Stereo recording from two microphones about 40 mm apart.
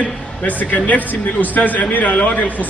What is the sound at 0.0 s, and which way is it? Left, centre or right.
A man's voice, left.